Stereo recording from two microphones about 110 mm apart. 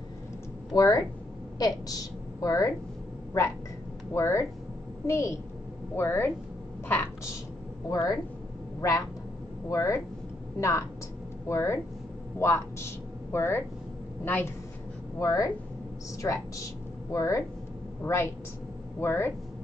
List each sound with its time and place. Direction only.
0.7 s a woman's voice: 35° left (ahead or behind)
4.1 s speech: 25° left (ahead or behind)
7.9 s speech: 35° left (ahead or behind)
9.7 s speech: 30° left (ahead or behind)
15.1 s speech: 30° left (ahead or behind)